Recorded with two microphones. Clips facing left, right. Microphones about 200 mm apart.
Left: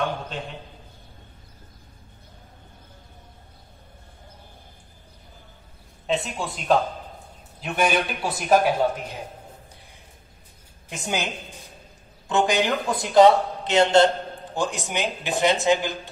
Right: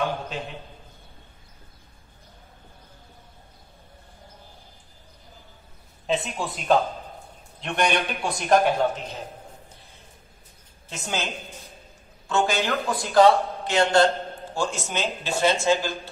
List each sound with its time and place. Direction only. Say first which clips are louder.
6.0 s a man's voice: even; centre (ahead or behind)
10.9 s a man's voice: left 2 dB; 15° left (ahead or behind)
12.3 s a man's voice: left 2 dB; 15° left (ahead or behind)